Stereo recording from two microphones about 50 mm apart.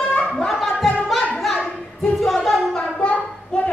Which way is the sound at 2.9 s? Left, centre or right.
Left.